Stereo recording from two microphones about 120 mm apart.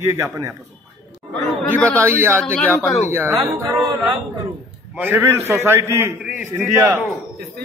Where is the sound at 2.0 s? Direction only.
20° right (ahead or behind).